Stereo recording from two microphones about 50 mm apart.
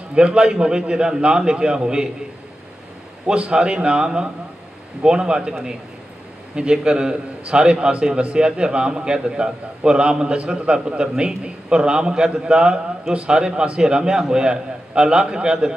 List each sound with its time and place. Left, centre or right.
0.1 s a man's voice: centre
3.3 s a man's voice: right